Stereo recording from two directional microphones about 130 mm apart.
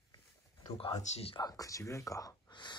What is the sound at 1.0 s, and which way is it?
Speech, 55° left (ahead or behind).